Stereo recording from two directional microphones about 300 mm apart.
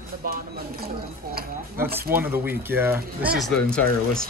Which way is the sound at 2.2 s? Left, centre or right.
Centre.